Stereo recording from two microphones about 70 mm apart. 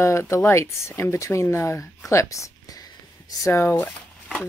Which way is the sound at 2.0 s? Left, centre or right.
Left.